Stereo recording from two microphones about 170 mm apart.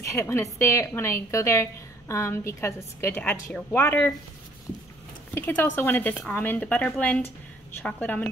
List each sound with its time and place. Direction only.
0.0 s a woman's voice: 15° left (ahead or behind)
5.3 s a woman's voice: 15° left (ahead or behind)